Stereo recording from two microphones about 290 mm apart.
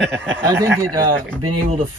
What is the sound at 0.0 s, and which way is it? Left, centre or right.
Speech, centre.